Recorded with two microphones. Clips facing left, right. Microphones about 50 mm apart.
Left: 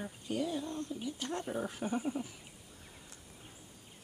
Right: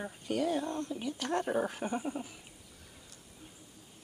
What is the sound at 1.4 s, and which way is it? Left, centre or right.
Speech, right.